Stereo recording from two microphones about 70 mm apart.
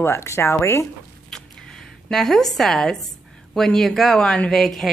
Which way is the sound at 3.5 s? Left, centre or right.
Centre.